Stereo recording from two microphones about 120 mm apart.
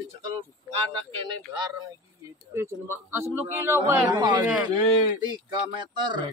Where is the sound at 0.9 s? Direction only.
40° right (ahead or behind).